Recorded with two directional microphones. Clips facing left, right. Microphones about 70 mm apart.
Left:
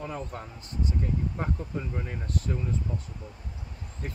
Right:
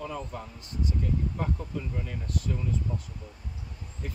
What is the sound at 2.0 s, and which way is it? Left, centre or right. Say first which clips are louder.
Speech: left 1 dB; left.